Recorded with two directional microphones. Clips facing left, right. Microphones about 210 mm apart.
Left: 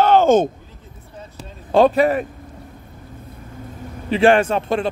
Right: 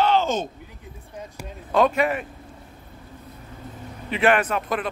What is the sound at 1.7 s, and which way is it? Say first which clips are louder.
Speech: left 6 dB; 30° left (ahead or behind).